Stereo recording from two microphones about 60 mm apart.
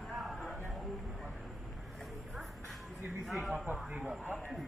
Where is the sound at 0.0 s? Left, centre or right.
Centre.